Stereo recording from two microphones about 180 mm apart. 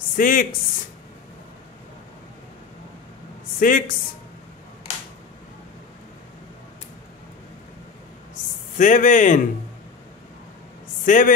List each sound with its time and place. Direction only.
0.1 s a man's voice: 50° left (ahead or behind)
3.5 s speech: 50° left (ahead or behind)
8.7 s a man's voice: 45° left (ahead or behind)
11.1 s a man's voice: 45° left (ahead or behind)